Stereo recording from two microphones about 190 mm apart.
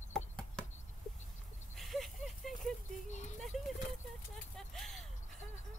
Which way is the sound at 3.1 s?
40° left (ahead or behind).